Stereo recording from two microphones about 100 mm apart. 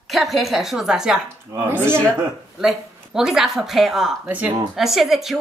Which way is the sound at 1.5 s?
25° right (ahead or behind).